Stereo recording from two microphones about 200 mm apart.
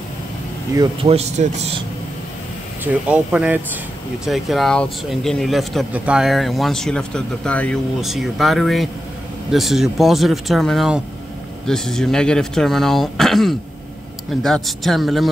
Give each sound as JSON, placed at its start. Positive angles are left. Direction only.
{"t": 1.0, "sound": "speech", "side_deg": -30}
{"t": 2.8, "sound": "speech", "side_deg": -5}